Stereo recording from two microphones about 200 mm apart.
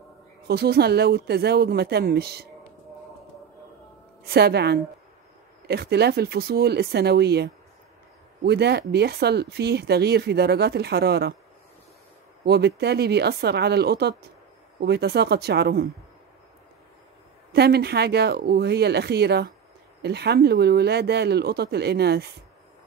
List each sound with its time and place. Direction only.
0.5 s speech: 50° right (ahead or behind)
4.3 s speech: 55° right (ahead or behind)
12.4 s speech: 55° right (ahead or behind)
17.5 s speech: 55° right (ahead or behind)